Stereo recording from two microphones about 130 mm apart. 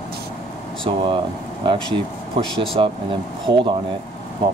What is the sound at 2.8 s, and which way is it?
Speech, 45° right (ahead or behind).